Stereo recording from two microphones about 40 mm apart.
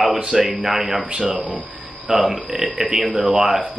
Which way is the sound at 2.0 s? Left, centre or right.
Centre.